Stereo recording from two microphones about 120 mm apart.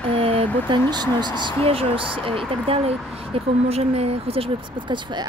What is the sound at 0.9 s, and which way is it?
Speech, 35° right (ahead or behind).